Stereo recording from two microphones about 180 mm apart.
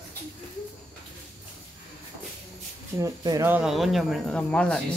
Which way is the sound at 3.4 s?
5° right (ahead or behind).